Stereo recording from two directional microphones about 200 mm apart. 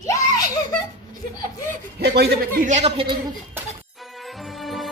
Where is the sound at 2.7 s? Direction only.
30° right (ahead or behind).